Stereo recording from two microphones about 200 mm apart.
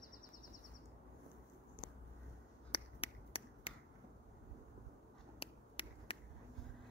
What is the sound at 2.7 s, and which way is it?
Finger snapping, 25° left (ahead or behind).